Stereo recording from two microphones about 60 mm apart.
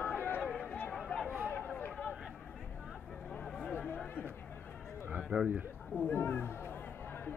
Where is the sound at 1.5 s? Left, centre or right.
Left.